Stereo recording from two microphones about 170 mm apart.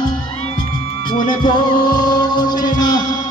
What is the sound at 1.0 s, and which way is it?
Music, 25° left (ahead or behind).